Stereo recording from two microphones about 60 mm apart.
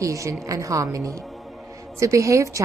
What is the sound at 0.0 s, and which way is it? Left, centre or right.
A woman's voice, right.